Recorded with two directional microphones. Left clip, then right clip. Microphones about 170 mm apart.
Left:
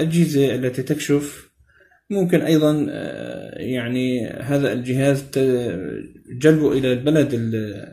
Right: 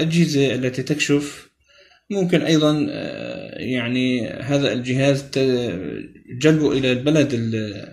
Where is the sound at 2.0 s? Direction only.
5° right (ahead or behind).